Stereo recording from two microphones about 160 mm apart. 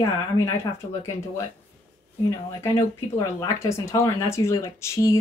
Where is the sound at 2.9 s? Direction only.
20° left (ahead or behind).